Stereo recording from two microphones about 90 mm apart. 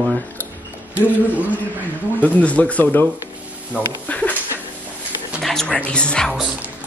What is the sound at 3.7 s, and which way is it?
Speech, 15° right (ahead or behind).